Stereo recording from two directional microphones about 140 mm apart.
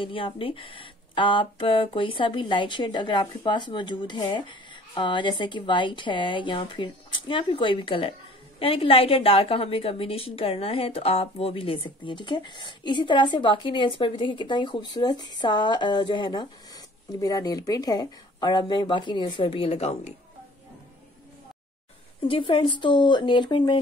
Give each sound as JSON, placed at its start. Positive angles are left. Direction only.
{"t": 0.0, "sound": "a woman's voice", "side_deg": 40}
{"t": 22.3, "sound": "a woman's voice", "side_deg": 40}